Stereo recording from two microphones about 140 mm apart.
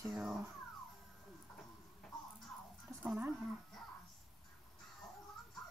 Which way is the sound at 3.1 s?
15° right (ahead or behind).